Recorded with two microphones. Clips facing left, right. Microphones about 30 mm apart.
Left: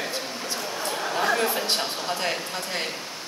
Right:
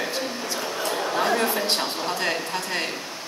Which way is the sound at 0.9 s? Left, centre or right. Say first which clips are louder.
Right 1 dB; centre.